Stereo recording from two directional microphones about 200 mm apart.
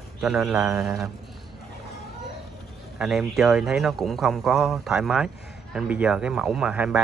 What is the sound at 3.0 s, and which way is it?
Speech, centre (ahead or behind).